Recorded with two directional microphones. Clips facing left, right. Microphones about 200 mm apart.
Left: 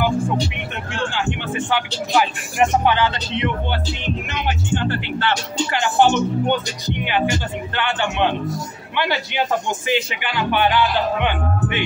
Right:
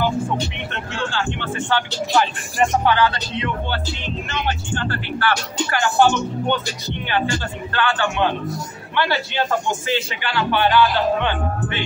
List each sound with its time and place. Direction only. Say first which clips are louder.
0.9 s speech: left 1 dB; 15° left (ahead or behind)